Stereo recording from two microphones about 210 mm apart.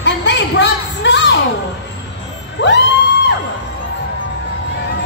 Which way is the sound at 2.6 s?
55° left (ahead or behind).